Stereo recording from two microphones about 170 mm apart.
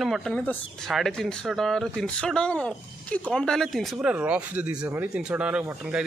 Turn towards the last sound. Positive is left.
turn(degrees=-5)  # may be behind; listen again after turning